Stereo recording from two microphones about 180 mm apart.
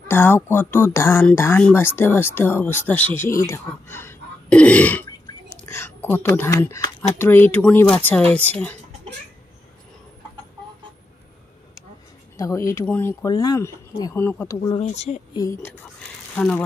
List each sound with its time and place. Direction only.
0.1 s speech: 15° left (ahead or behind)
12.4 s speech: 15° left (ahead or behind)
14.8 s speech: 35° left (ahead or behind)
15.3 s speech: 20° left (ahead or behind)
16.3 s speech: 5° left (ahead or behind)